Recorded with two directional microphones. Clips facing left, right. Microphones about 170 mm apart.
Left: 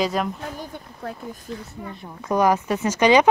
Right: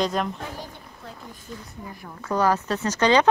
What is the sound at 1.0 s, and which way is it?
Speech, 55° left (ahead or behind).